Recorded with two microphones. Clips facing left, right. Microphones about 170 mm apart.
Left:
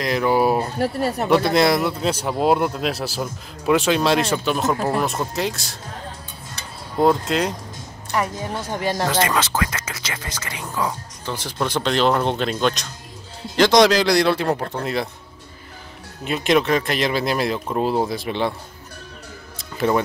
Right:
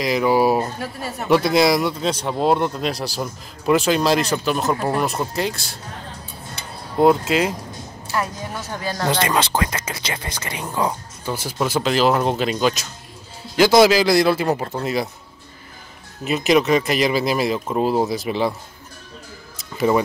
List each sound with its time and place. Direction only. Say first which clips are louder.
0.0 s speech: right 1 dB; 5° right (ahead or behind)
0.7 s speech: left 8 dB; 60° left (ahead or behind)
1.3 s speech: right 2 dB; centre (ahead or behind)
7.0 s speech: right 2 dB; 5° right (ahead or behind)
8.2 s a woman's voice: left 2 dB; 15° left (ahead or behind)
9.3 s speech: right 2 dB; 30° right (ahead or behind)
11.2 s speech: right 2 dB; 10° right (ahead or behind)
16.3 s speech: right 2 dB; centre (ahead or behind)